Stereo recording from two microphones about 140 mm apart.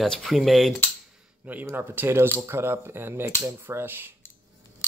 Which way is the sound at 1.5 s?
15° right (ahead or behind).